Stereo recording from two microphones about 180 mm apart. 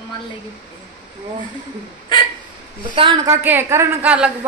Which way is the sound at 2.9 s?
25° right (ahead or behind).